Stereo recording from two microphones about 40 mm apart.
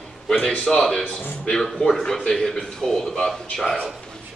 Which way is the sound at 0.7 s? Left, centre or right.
Centre.